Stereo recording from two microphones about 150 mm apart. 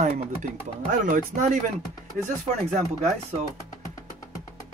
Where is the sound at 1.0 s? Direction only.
60° right (ahead or behind).